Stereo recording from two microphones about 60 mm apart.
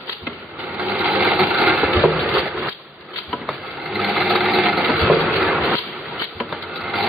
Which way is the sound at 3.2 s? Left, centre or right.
Centre.